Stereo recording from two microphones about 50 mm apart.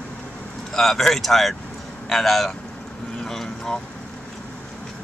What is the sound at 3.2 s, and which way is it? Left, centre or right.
Vehicle, centre.